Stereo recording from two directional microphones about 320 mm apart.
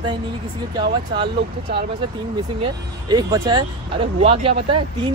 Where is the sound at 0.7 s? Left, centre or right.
Centre.